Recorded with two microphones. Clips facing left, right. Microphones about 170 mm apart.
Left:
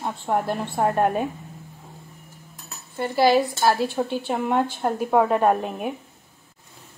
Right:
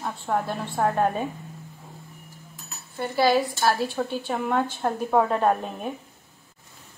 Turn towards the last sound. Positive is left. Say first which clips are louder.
# left 3 dB
turn(degrees=10)  # may be behind; listen again after turning